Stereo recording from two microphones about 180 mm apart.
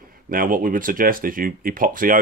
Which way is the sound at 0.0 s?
50° right (ahead or behind).